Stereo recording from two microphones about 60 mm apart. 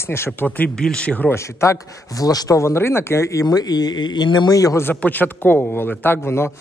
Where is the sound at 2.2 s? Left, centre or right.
Left.